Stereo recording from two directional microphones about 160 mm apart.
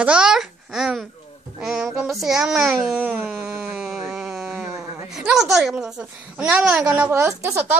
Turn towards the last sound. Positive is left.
turn(degrees=-15)  # may be behind; listen again after turning